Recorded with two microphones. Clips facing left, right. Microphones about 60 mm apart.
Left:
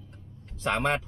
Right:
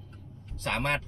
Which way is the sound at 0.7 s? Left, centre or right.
Left.